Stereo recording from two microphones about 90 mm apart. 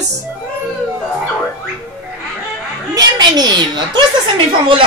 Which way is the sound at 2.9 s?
45° right (ahead or behind).